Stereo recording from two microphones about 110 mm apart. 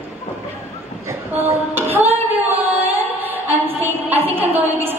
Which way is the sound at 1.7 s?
20° right (ahead or behind).